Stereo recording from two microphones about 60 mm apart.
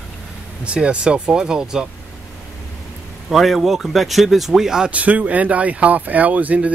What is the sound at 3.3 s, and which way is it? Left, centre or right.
Speech, centre.